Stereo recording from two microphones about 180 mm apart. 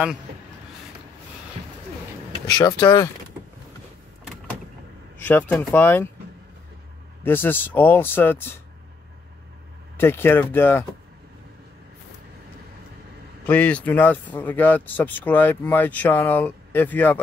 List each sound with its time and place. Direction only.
2.4 s speech: 20° left (ahead or behind)
5.2 s speech: 10° left (ahead or behind)
7.2 s speech: 10° left (ahead or behind)
9.9 s speech: 15° left (ahead or behind)
13.5 s speech: 10° left (ahead or behind)